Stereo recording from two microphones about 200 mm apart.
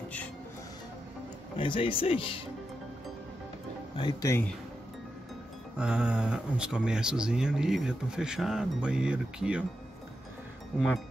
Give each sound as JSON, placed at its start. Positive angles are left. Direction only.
{"t": 1.6, "sound": "speech", "side_deg": 25}
{"t": 3.9, "sound": "speech", "side_deg": 20}
{"t": 5.8, "sound": "speech", "side_deg": -5}